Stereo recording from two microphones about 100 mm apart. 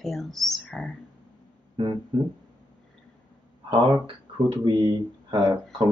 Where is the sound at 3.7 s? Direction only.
55° right (ahead or behind).